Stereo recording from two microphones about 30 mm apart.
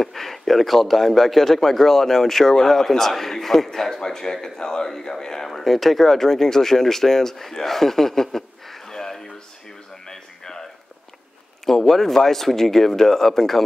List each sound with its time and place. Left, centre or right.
0.0 s a man's voice: centre
5.5 s speech: centre
10.0 s a sound: left
11.6 s a man's voice: centre